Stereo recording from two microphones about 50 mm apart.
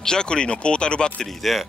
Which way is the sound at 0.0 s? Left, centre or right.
Centre.